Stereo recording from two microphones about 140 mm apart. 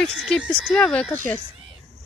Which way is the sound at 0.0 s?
Centre (ahead or behind).